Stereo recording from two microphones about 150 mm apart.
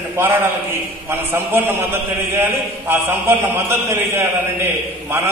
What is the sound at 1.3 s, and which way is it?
A man's voice, 15° right (ahead or behind).